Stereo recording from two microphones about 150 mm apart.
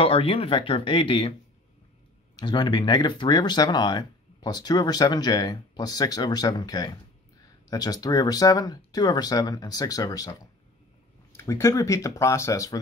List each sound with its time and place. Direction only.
0.0 s speech: 40° left (ahead or behind)
2.4 s speech: 30° left (ahead or behind)
11.3 s speech: 20° left (ahead or behind)